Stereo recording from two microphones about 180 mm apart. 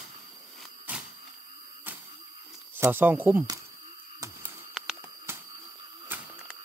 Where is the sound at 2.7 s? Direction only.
10° right (ahead or behind).